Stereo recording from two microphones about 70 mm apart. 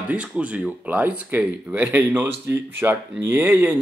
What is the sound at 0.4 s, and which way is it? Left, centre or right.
Speech, centre.